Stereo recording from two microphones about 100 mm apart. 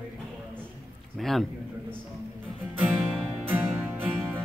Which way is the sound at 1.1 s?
5° left (ahead or behind).